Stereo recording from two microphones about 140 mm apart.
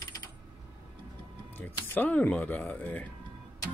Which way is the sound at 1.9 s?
10° left (ahead or behind).